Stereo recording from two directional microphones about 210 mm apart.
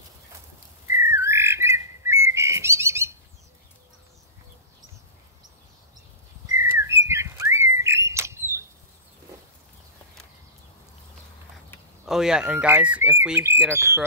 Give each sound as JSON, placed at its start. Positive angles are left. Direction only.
{"t": 1.0, "sound": "bird", "side_deg": -15}
{"t": 6.6, "sound": "bird", "side_deg": -10}
{"t": 12.1, "sound": "speech", "side_deg": -5}